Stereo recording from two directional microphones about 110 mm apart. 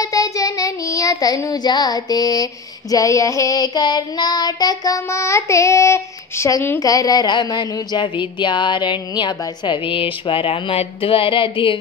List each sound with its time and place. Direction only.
0.0 s child singing: 30° left (ahead or behind)
6.8 s speech: 35° left (ahead or behind); by 11.8 s 50° left (ahead or behind)